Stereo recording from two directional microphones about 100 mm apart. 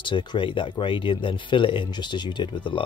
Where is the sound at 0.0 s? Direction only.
50° left (ahead or behind).